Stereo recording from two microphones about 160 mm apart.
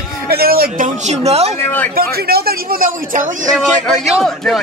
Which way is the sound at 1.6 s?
10° left (ahead or behind).